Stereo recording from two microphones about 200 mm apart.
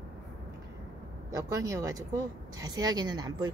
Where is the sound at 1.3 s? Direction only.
15° right (ahead or behind).